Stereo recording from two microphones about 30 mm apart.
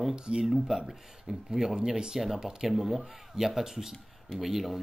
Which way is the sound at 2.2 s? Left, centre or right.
Centre.